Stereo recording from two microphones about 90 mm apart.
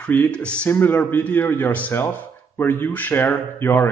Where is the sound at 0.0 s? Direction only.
15° left (ahead or behind).